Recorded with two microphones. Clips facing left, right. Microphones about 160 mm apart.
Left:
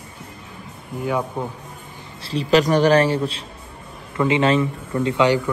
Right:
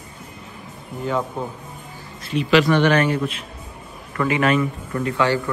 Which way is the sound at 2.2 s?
35° left (ahead or behind).